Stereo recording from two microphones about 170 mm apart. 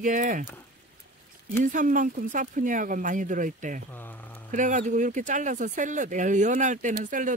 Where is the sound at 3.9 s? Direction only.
10° left (ahead or behind).